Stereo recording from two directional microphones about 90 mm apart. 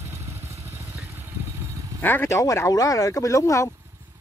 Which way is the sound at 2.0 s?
25° left (ahead or behind).